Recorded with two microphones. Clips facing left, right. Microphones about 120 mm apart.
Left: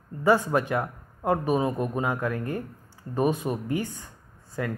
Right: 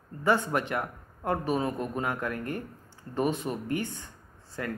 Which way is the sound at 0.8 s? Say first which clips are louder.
Left 5 dB; 20° left (ahead or behind).